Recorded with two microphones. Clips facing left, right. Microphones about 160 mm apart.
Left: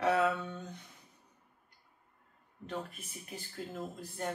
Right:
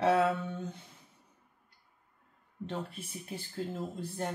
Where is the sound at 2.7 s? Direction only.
30° right (ahead or behind).